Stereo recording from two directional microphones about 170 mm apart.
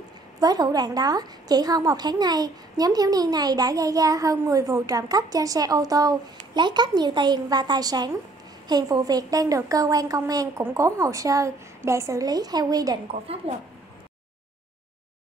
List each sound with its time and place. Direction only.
0.4 s a woman's voice: 20° right (ahead or behind)
13.5 s speech: 35° right (ahead or behind)